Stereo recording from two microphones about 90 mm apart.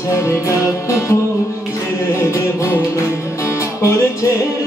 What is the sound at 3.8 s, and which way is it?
Music, 35° left (ahead or behind).